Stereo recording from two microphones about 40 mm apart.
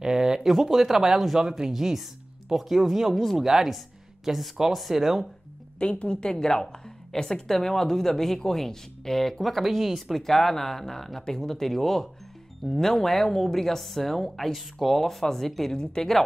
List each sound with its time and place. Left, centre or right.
0.0 s speech: centre
5.8 s a woman's voice: left
6.2 s a woman's voice: centre
15.7 s a woman's voice: centre